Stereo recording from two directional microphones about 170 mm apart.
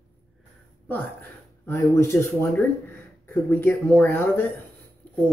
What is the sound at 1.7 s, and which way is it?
Speech, 15° left (ahead or behind).